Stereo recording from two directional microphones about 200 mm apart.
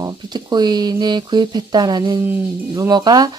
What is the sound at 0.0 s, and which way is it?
Speech, 20° right (ahead or behind).